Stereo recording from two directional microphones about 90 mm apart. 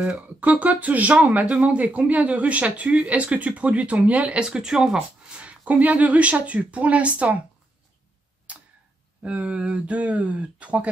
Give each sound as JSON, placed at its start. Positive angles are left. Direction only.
{"t": 0.0, "sound": "speech", "side_deg": -15}
{"t": 8.5, "sound": "tick-tock", "side_deg": -15}
{"t": 9.2, "sound": "speech", "side_deg": -15}